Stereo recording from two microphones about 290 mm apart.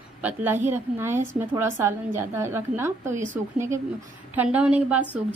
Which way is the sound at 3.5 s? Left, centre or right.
Centre.